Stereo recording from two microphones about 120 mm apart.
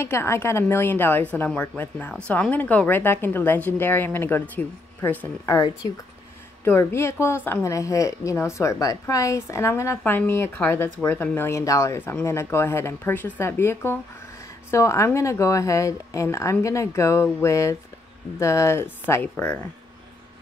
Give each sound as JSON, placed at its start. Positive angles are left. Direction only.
{"t": 0.0, "sound": "a woman's voice", "side_deg": 20}
{"t": 5.5, "sound": "a woman's voice", "side_deg": 30}